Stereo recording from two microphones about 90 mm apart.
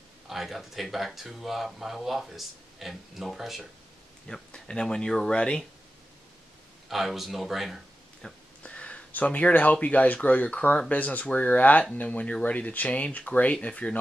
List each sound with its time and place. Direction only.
0.3 s speech: centre (ahead or behind)
6.9 s a man's voice: centre (ahead or behind)
8.6 s speech: 15° left (ahead or behind)